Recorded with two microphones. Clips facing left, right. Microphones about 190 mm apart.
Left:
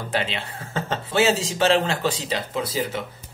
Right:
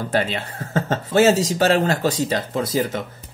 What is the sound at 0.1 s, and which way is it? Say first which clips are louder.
Speech: right 3 dB; 45° right (ahead or behind).